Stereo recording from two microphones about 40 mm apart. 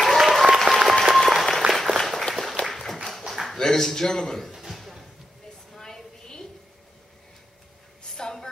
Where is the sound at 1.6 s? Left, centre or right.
Right.